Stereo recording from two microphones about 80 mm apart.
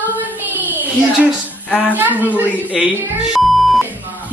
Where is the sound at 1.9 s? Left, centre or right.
Right.